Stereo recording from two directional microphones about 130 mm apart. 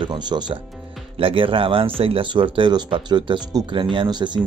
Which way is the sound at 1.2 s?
45° right (ahead or behind).